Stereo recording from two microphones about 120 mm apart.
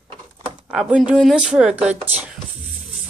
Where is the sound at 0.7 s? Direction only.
5° right (ahead or behind).